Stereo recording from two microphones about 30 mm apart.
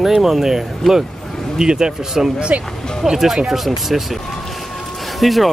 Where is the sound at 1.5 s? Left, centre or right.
Right.